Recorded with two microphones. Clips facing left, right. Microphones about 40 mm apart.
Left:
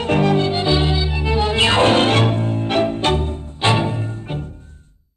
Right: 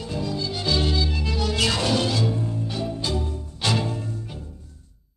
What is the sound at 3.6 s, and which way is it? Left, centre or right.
Music, left.